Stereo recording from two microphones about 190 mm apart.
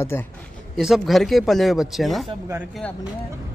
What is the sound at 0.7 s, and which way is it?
Speech, centre (ahead or behind).